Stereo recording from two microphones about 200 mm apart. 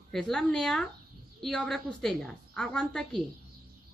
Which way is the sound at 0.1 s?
Centre (ahead or behind).